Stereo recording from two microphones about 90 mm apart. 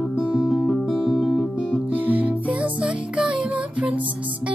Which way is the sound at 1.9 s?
20° right (ahead or behind).